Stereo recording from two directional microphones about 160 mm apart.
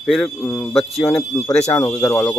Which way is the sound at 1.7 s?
15° left (ahead or behind).